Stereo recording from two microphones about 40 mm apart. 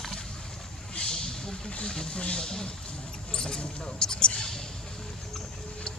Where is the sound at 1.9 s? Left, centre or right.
Left.